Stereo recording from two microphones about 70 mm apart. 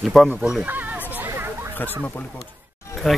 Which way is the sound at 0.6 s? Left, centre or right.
Right.